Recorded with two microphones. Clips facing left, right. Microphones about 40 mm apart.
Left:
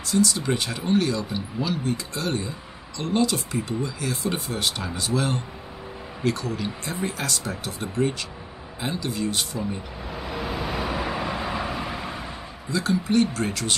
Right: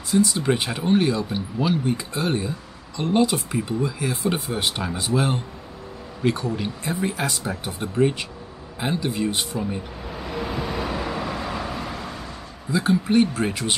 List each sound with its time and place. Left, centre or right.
0.1 s speech: centre
10.0 s vehicle: centre
12.7 s speech: centre